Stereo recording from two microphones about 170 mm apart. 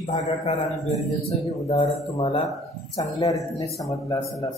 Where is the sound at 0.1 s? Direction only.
40° left (ahead or behind).